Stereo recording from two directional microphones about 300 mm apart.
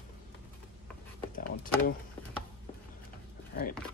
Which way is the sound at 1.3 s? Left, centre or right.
Left.